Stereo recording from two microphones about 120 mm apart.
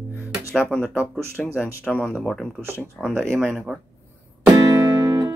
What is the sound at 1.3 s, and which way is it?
Speech, 20° left (ahead or behind).